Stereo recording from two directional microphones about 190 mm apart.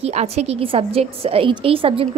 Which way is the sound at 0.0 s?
35° right (ahead or behind).